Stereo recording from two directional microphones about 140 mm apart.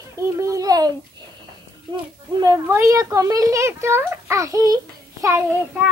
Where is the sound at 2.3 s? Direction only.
30° right (ahead or behind).